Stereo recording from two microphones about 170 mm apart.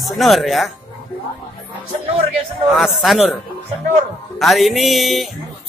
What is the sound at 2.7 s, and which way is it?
Speech, centre (ahead or behind).